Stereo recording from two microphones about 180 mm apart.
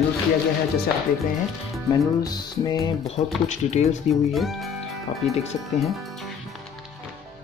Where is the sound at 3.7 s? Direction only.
35° left (ahead or behind).